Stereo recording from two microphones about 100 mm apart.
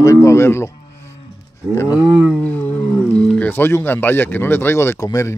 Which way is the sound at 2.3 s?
15° left (ahead or behind).